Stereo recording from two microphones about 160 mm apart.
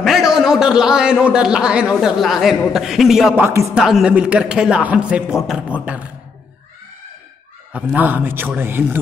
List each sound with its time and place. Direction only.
0.0 s a man's voice: centre (ahead or behind)
7.7 s a man's voice: 10° right (ahead or behind)